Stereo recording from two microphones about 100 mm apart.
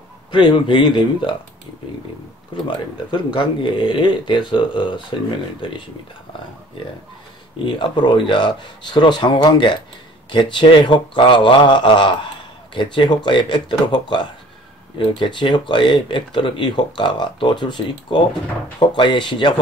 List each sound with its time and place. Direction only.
0.3 s speech: 50° left (ahead or behind)
3.1 s speech: 50° left (ahead or behind)
7.5 s speech: 55° left (ahead or behind)